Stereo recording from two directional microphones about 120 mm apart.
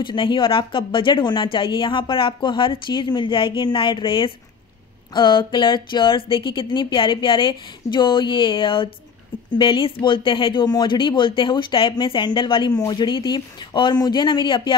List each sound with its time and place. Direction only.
0.0 s speech: 40° left (ahead or behind)